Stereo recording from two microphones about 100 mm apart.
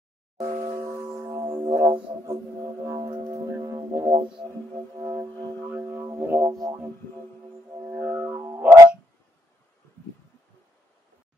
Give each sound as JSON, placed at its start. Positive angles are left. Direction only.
{"t": 0.5, "sound": "a sound", "side_deg": -50}
{"t": 0.7, "sound": "music", "side_deg": -30}
{"t": 5.2, "sound": "music", "side_deg": -40}
{"t": 5.7, "sound": "speech", "side_deg": -25}
{"t": 6.5, "sound": "music", "side_deg": -35}